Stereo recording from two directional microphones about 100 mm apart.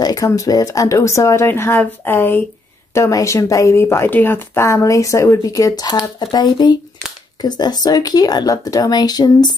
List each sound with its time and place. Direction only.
0.0 s speech: 40° left (ahead or behind); by 2.4 s 20° left (ahead or behind)
2.9 s speech: 30° left (ahead or behind)